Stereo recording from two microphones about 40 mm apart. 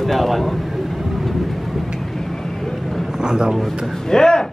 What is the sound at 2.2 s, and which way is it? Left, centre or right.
Vehicle, centre.